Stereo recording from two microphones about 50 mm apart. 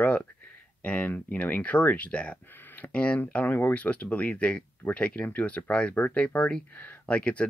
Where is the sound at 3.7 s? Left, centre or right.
Left.